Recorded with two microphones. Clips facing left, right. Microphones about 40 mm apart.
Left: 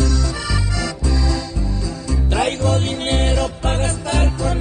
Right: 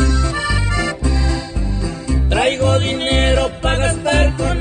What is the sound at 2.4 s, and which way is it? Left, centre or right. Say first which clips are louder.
Music: right 4 dB; right.